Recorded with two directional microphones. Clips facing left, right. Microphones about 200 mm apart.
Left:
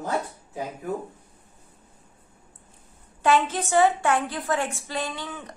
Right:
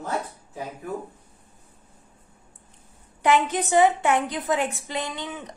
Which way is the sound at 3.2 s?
20° right (ahead or behind).